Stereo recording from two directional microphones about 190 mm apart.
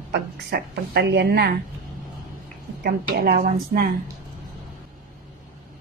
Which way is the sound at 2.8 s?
55° right (ahead or behind).